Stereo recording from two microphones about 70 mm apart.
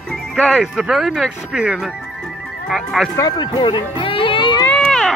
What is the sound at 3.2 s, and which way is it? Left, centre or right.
Speech, left.